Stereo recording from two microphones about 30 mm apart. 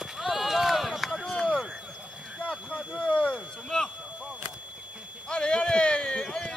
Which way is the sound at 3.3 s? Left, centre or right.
Left.